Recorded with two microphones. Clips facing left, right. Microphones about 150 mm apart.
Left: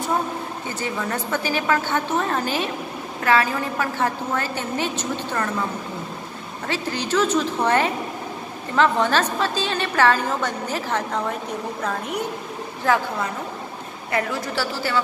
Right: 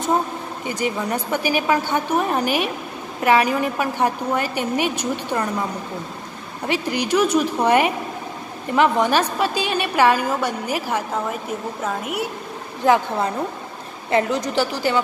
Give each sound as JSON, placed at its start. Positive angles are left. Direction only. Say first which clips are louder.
{"t": 0.7, "sound": "a woman's voice", "louder": "right 5 dB", "side_deg": -15}
{"t": 6.7, "sound": "a woman's voice", "louder": "right 3 dB", "side_deg": -15}
{"t": 12.8, "sound": "a woman's voice", "louder": "right 4 dB", "side_deg": -20}
{"t": 14.1, "sound": "a woman's voice", "louder": "right 5 dB", "side_deg": -20}